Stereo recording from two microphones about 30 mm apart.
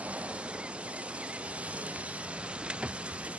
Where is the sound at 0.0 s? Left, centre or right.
Right.